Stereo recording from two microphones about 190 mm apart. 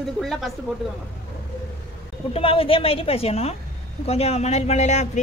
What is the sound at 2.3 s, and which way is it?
A woman's voice, 30° left (ahead or behind).